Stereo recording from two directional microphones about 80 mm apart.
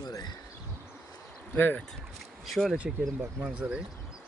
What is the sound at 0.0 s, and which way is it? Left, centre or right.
Bee, left.